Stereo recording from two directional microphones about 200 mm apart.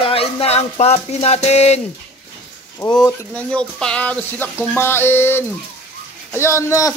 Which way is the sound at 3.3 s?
5° left (ahead or behind).